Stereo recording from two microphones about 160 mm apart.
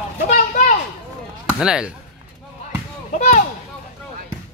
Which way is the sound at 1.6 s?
5° right (ahead or behind).